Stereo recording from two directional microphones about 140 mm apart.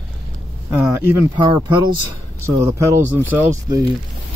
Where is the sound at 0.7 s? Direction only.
20° right (ahead or behind).